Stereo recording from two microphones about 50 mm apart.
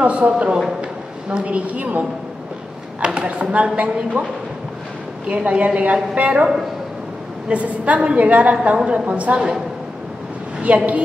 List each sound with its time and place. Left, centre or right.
0.0 s a woman's voice: right
3.2 s a woman's voice: right
5.3 s a woman's voice: right
10.7 s a woman's voice: right